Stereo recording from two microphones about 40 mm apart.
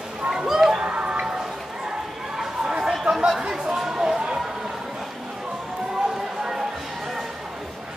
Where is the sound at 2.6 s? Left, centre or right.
Centre.